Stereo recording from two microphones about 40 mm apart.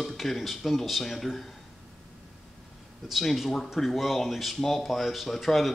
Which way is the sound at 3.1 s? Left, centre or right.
Centre.